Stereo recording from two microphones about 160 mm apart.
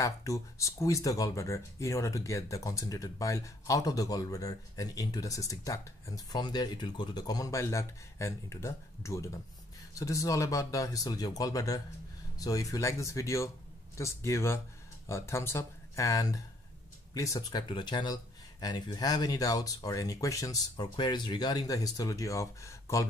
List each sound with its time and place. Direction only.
0.0 s speech: 20° left (ahead or behind)